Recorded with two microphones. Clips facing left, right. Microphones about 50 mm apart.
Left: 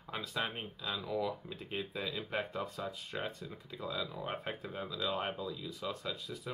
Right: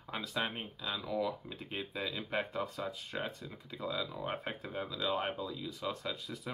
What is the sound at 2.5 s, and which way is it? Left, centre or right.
Speech, centre.